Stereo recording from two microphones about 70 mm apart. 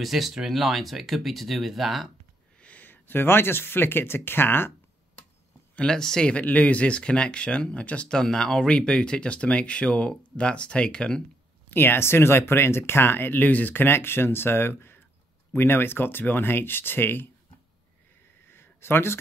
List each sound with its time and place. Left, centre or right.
0.0 s speech: centre
2.6 s speech: left
5.8 s speech: centre
11.7 s speech: left
18.5 s a sound: left